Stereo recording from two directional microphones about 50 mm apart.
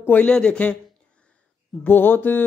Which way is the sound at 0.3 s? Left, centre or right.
Centre.